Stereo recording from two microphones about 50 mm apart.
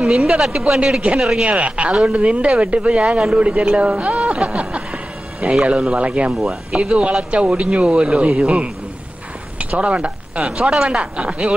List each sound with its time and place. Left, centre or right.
0.1 s speech: centre
1.4 s speech: right
6.3 s speech: centre
6.8 s speech: right
9.6 s speech: right
10.4 s speech: centre